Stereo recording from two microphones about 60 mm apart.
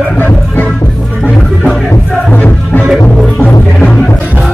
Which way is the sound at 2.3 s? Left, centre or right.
Left.